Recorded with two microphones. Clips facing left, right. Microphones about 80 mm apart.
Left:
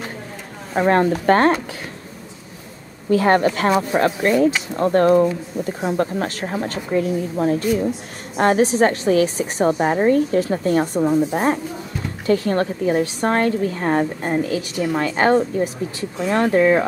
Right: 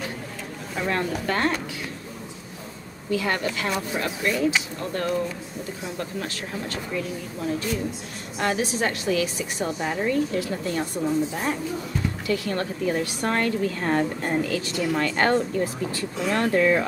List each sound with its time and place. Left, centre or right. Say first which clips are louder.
0.7 s speech: left 10 dB; left
3.1 s a woman's voice: left 10 dB; left